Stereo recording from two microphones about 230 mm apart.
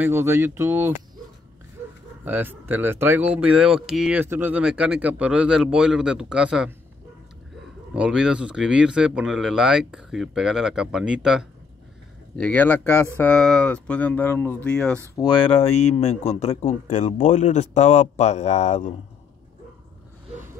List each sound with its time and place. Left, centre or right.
0.0 s speech: centre
2.2 s speech: centre
7.9 s speech: centre
15.1 s speech: centre